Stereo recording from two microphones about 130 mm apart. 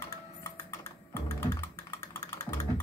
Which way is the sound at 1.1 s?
20° left (ahead or behind).